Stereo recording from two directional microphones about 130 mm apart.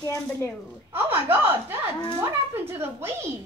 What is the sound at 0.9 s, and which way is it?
A woman's voice, 15° right (ahead or behind).